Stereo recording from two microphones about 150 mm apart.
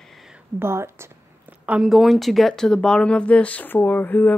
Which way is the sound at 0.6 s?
15° right (ahead or behind).